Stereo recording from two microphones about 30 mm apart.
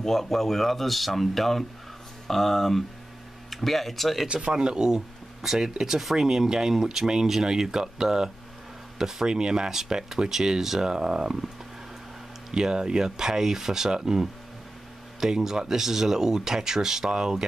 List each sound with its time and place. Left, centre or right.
0.0 s speech: centre
4.3 s speech: right
4.6 s speech: right
5.8 s speech: centre
9.7 s speech: centre